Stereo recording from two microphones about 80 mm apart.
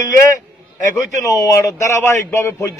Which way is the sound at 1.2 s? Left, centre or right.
Left.